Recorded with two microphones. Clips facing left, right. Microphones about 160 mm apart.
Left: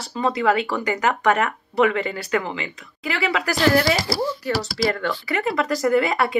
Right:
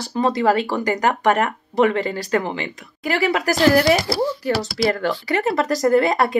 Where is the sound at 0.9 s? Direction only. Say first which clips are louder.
Right 2 dB; 40° right (ahead or behind).